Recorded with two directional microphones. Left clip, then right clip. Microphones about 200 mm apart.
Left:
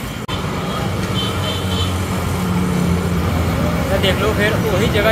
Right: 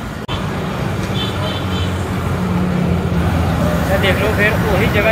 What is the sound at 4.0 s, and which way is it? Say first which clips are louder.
Speech: right 1 dB; 20° left (ahead or behind).